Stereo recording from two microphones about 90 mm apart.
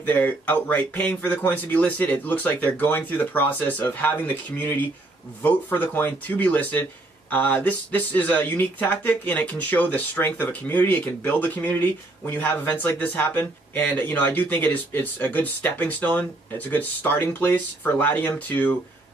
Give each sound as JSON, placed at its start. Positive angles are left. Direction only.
{"t": 0.0, "sound": "speech", "side_deg": 20}